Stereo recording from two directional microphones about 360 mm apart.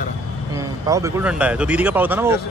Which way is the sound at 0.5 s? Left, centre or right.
Centre.